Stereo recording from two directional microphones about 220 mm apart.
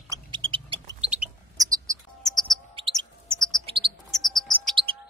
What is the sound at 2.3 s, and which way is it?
Chirp, centre (ahead or behind).